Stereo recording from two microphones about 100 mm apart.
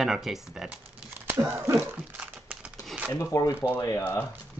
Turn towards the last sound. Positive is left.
turn(degrees=35)  # may be behind; listen again after turning